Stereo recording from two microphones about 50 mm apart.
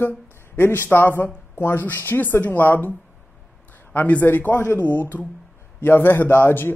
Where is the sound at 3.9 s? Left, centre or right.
Left.